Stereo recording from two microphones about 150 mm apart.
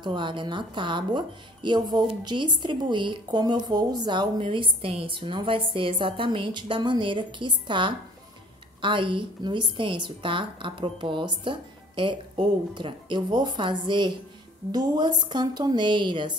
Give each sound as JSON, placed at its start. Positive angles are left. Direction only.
{"t": 0.0, "sound": "a woman's voice", "side_deg": -30}